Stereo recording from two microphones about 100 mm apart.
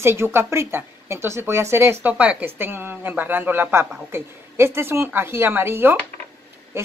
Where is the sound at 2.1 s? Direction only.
15° right (ahead or behind).